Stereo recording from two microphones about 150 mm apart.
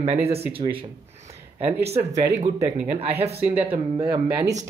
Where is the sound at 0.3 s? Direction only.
35° right (ahead or behind).